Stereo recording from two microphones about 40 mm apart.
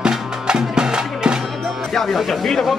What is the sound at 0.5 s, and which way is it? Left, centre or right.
Music, centre.